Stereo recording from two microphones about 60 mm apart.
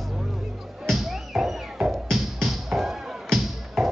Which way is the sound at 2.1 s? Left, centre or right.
Centre.